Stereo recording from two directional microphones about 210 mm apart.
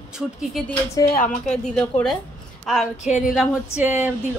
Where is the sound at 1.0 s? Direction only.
20° left (ahead or behind).